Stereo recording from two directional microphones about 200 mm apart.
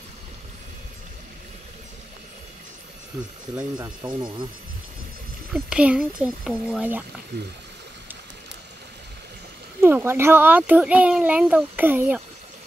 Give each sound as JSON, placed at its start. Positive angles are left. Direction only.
{"t": 4.0, "sound": "a child's voice", "side_deg": -15}
{"t": 5.5, "sound": "speech", "side_deg": -5}
{"t": 9.8, "sound": "a child's voice", "side_deg": -10}